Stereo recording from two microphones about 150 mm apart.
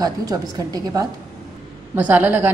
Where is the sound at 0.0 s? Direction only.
25° right (ahead or behind).